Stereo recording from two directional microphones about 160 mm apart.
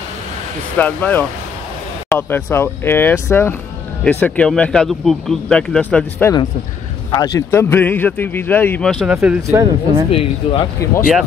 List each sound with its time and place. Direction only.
0.7 s speech: 10° left (ahead or behind)
7.1 s speech: 25° left (ahead or behind); by 9.0 s 10° left (ahead or behind)
9.0 s speech: 5° right (ahead or behind)
9.5 s speech: 20° right (ahead or behind)
10.1 s speech: 35° left (ahead or behind)